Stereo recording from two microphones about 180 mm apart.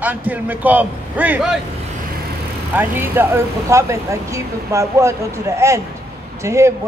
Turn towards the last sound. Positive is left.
turn(degrees=-15)  # may be behind; listen again after turning